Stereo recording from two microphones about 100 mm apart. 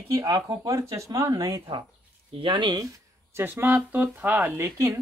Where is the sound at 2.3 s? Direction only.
60° right (ahead or behind).